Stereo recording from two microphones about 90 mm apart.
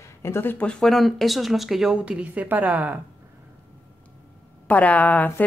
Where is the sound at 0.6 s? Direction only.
5° left (ahead or behind); by 3.0 s 20° right (ahead or behind).